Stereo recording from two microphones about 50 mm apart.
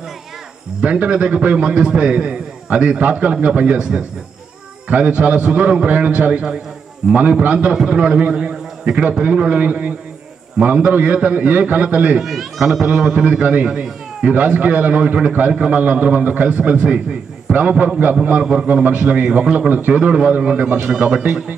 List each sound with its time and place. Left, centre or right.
0.7 s a man's voice: right
12.2 s speech: centre
12.9 s a man's voice: centre
18.4 s a man's voice: centre
18.7 s a man's voice: right